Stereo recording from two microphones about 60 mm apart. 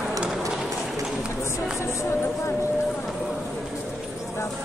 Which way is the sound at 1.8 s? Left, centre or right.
Left.